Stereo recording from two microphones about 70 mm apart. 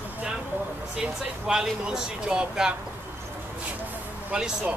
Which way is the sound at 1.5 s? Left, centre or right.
Centre.